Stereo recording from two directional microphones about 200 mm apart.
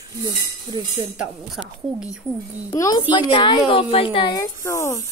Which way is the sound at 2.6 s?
20° left (ahead or behind).